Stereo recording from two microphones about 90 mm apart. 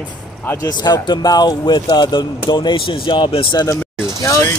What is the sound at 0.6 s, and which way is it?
Speech, 50° left (ahead or behind).